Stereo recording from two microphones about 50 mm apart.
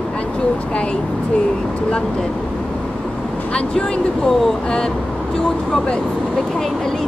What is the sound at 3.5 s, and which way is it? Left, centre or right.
Speech, centre.